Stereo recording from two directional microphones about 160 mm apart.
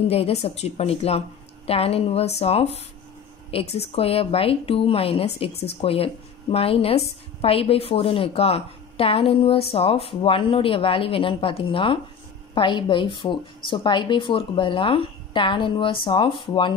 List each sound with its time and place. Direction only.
0.1 s a woman's voice: 40° left (ahead or behind)